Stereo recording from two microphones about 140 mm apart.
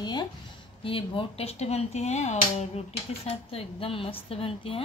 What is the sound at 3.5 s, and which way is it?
A woman's voice, 40° left (ahead or behind).